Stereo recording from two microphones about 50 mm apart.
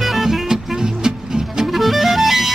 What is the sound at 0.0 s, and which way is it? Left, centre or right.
Music, centre.